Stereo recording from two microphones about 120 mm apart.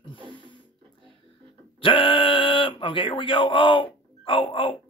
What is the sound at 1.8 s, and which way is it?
Speech, 45° left (ahead or behind).